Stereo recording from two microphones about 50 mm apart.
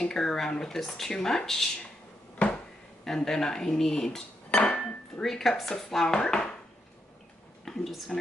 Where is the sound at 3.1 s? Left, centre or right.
Centre.